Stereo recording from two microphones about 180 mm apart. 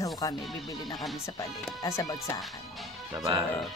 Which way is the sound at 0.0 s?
20° left (ahead or behind).